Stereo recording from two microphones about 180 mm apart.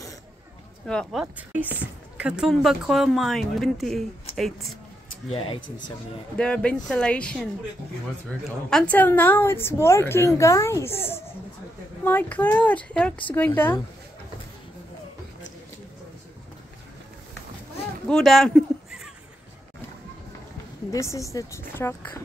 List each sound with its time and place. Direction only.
0.8 s speech: centre (ahead or behind)
5.3 s speech: 30° left (ahead or behind)
6.3 s speech: 5° left (ahead or behind)
8.6 s a woman's voice: 5° left (ahead or behind)
18.0 s a sound: 5° left (ahead or behind)
20.9 s a woman's voice: 15° left (ahead or behind)